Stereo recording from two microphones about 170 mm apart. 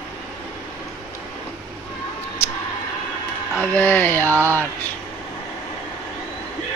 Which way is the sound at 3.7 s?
10° left (ahead or behind).